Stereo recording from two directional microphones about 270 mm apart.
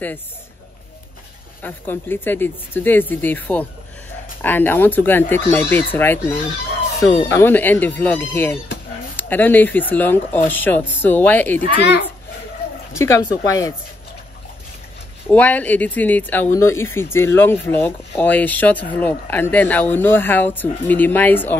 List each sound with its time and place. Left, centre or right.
1.6 s speech: centre
11.6 s a child's voice: left
12.9 s speech: centre
15.2 s speech: centre